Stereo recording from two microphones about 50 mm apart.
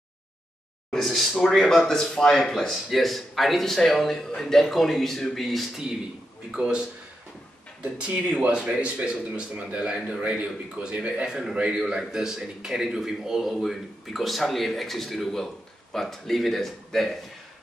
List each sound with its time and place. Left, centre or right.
0.9 s a man's voice: centre
6.5 s a man's voice: centre